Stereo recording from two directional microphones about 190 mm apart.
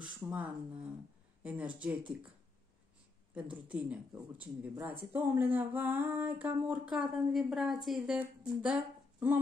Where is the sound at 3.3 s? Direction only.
5° right (ahead or behind).